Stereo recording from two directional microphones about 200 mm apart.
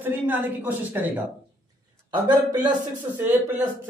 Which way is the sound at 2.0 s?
20° right (ahead or behind).